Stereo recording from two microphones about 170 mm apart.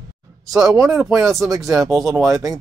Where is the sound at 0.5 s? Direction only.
20° right (ahead or behind).